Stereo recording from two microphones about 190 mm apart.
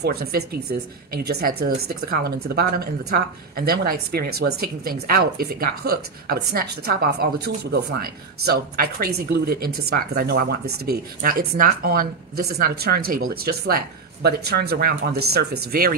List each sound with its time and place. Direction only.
0.0 s speech: 55° right (ahead or behind)